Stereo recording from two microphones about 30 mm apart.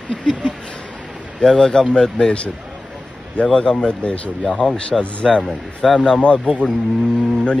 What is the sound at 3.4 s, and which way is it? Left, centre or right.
Speech, left.